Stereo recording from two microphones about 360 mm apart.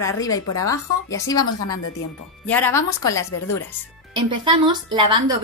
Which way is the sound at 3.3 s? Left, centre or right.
Left.